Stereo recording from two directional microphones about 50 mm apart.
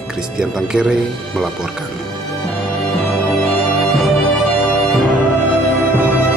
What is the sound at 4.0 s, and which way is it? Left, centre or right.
Music, centre.